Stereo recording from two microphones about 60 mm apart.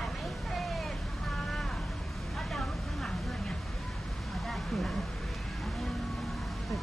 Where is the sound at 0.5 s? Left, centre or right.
Centre.